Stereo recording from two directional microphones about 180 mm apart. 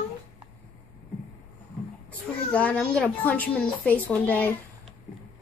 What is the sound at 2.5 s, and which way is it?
A woman's voice, 5° left (ahead or behind).